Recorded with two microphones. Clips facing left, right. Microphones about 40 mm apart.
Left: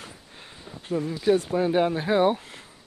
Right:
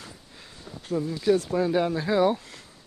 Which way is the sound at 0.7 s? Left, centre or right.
Centre.